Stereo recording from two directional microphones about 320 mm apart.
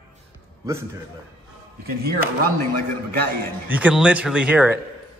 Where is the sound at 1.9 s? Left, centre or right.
Right.